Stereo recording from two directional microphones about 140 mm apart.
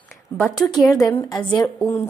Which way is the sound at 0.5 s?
30° left (ahead or behind).